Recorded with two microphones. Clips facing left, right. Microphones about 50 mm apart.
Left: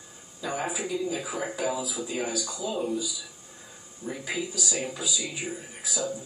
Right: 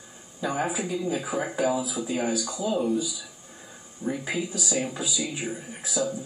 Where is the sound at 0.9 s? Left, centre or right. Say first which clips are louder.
Right 2 dB; centre.